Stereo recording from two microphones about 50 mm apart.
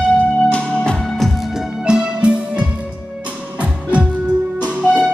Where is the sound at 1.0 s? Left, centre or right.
Centre; by 4.1 s right.